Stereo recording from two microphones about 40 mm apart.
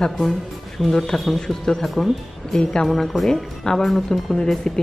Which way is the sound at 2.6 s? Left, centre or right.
Centre.